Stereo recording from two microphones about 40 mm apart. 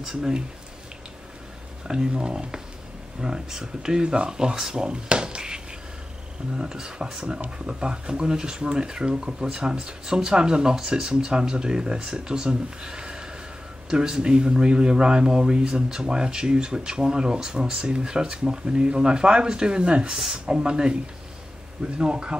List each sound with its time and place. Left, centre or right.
0.0 s speech: centre
1.9 s speech: centre